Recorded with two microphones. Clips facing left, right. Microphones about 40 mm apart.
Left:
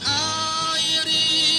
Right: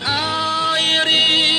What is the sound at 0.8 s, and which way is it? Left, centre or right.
Music, right.